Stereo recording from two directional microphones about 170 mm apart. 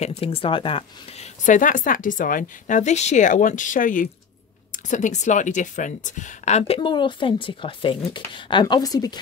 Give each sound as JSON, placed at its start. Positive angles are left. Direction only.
{"t": 0.0, "sound": "a woman's voice", "side_deg": 35}
{"t": 6.8, "sound": "speech", "side_deg": 30}